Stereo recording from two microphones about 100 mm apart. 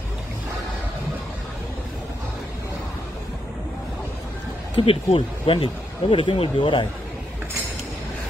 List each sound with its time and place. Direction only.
4.7 s speech: 65° left (ahead or behind); by 6.9 s 50° left (ahead or behind)